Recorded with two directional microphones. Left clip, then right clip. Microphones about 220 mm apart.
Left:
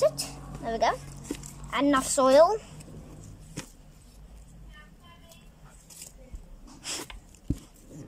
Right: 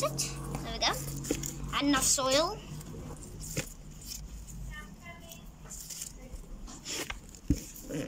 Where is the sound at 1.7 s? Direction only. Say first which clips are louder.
Left 4 dB; 35° left (ahead or behind).